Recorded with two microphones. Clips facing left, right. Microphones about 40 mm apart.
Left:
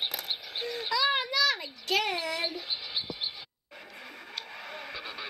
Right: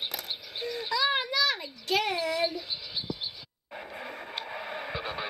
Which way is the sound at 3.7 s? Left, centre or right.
Centre.